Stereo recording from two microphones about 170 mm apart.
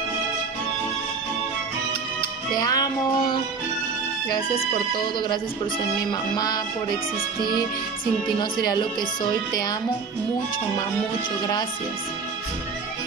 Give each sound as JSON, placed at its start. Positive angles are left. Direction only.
{"t": 2.5, "sound": "speech", "side_deg": 20}
{"t": 4.6, "sound": "speech", "side_deg": 25}
{"t": 8.4, "sound": "speech", "side_deg": 25}